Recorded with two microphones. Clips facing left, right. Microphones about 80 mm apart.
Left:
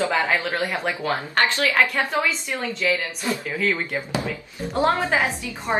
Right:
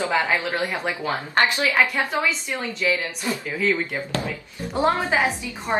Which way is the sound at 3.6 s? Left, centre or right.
Centre.